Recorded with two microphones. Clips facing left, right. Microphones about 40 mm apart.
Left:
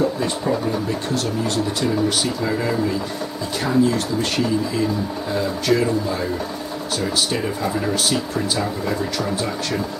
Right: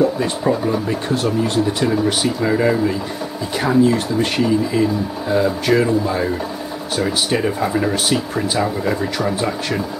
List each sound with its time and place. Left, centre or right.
0.0 s speech: centre
5.3 s speech: centre